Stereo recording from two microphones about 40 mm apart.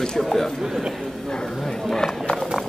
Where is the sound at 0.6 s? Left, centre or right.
Centre.